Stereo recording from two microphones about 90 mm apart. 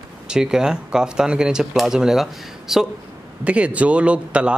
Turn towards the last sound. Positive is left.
turn(degrees=-15)  # may be behind; listen again after turning